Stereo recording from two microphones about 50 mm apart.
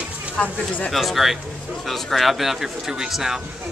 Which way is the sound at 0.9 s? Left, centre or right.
Centre.